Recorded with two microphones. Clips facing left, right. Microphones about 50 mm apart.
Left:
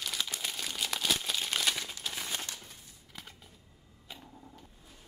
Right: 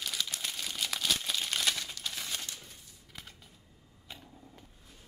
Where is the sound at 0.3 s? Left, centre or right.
Centre.